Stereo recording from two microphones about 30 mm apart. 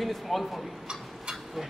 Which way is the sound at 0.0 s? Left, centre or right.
Centre.